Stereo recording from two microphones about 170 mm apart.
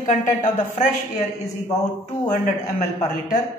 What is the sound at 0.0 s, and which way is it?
Speech, 50° left (ahead or behind).